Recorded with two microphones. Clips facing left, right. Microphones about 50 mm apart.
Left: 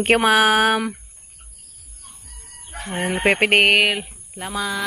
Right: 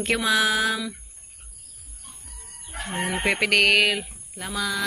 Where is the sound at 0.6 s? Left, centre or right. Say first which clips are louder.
Left 7 dB; left.